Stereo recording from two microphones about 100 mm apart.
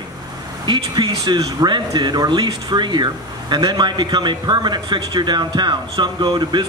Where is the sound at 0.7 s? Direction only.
50° right (ahead or behind).